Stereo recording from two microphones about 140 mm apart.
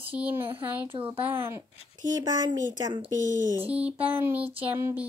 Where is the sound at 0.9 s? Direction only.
40° right (ahead or behind).